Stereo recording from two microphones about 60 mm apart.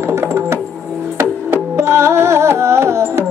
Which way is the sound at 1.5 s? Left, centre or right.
Right.